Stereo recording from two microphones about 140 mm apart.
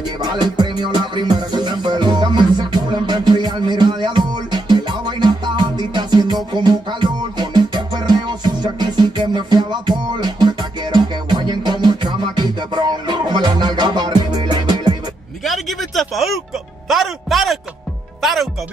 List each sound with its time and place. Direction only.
0.2 s music: 30° right (ahead or behind)
15.4 s a sound: centre (ahead or behind)
16.8 s a man's voice: centre (ahead or behind)